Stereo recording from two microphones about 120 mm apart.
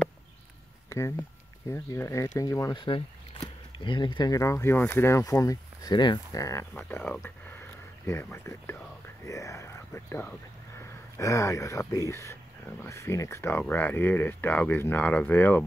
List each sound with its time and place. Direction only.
0.8 s a sound: 25° left (ahead or behind)
1.7 s speech: 20° left (ahead or behind)
2.7 s speech: 45° left (ahead or behind)
6.7 s speech: 15° left (ahead or behind)
8.1 s speech: 20° left (ahead or behind)